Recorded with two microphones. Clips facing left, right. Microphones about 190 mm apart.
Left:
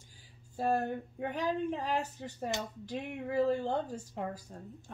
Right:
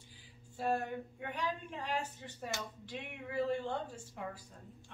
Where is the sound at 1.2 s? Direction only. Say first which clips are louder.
Left 9 dB; 40° left (ahead or behind).